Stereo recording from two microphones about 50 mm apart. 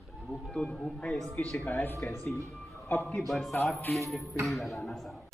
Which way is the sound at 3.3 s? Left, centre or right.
Centre.